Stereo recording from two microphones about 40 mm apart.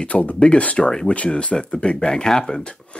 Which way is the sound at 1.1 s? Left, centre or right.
Left.